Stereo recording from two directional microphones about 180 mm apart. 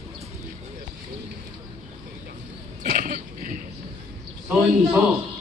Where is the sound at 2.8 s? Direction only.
50° right (ahead or behind).